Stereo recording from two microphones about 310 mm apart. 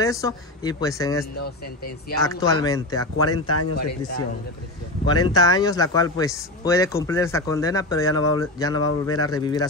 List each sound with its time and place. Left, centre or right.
0.0 s speech: centre
2.2 s speech: centre
3.3 s speech: left
3.7 s speech: left
5.3 s speech: centre
9.0 s speech: left
9.3 s speech: centre